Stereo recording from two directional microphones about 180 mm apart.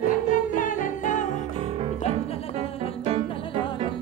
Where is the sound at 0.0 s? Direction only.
50° left (ahead or behind).